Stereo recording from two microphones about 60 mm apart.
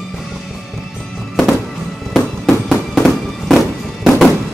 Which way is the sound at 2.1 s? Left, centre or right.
Centre.